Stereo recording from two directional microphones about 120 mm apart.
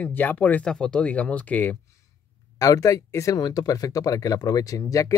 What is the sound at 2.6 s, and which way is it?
Speech, 30° left (ahead or behind).